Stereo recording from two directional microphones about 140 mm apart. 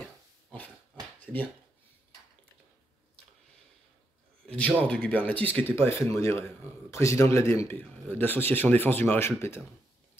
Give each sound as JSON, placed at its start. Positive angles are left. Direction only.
{"t": 0.0, "sound": "pig", "side_deg": 10}
{"t": 1.2, "sound": "a sound", "side_deg": 10}
{"t": 4.5, "sound": "speech", "side_deg": 10}